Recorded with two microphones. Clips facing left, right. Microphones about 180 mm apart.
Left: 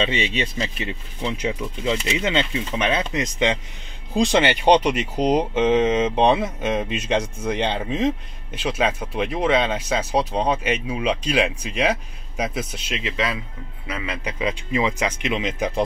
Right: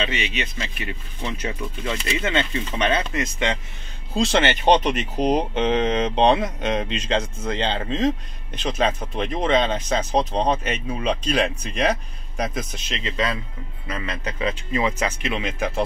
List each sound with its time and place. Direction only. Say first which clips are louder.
0.0 s speech: left 3 dB; 25° left (ahead or behind)